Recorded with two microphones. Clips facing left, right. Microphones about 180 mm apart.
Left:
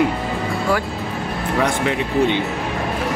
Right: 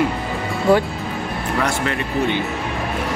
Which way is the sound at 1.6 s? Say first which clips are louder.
Left 2 dB; 15° left (ahead or behind).